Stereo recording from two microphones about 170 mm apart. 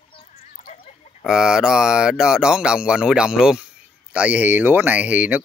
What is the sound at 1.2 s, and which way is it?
Speech, 5° right (ahead or behind).